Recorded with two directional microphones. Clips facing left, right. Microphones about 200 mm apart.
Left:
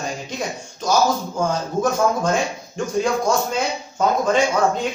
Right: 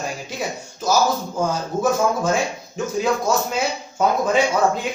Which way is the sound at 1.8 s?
5° right (ahead or behind).